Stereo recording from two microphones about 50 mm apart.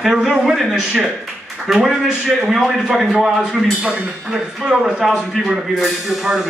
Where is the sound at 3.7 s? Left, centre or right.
Right.